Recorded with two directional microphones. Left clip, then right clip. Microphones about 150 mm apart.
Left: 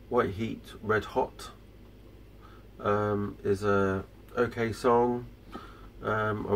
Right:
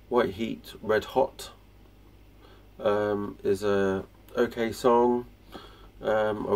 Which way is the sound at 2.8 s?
25° right (ahead or behind).